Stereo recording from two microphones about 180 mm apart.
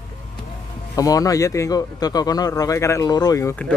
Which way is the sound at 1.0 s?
20° left (ahead or behind).